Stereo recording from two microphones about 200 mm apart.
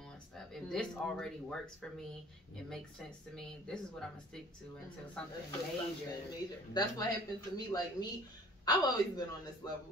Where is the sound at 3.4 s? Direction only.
5° left (ahead or behind).